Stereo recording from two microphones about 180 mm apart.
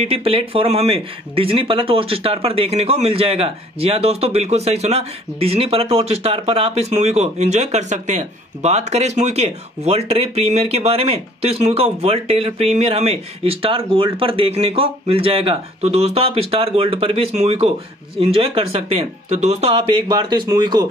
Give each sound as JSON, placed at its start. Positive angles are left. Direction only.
{"t": 0.0, "sound": "speech", "side_deg": -30}